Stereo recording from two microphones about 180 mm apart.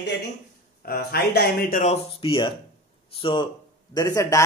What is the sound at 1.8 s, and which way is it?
Speech, 35° left (ahead or behind).